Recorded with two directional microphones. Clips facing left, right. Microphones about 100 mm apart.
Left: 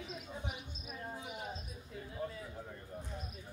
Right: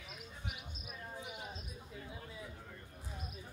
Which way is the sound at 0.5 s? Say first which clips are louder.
Left 3 dB; 30° left (ahead or behind).